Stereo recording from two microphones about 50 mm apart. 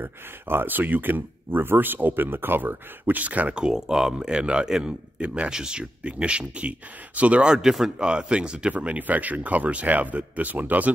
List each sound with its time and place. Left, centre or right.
0.0 s speech: right
3.6 s speech: centre
4.3 s speech: centre
7.4 s speech: centre; by 10.9 s right